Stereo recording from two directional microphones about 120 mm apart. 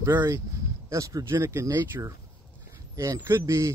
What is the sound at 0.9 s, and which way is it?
Speech, 25° right (ahead or behind).